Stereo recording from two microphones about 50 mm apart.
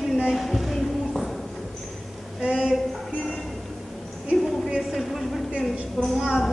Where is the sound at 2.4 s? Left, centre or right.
Centre.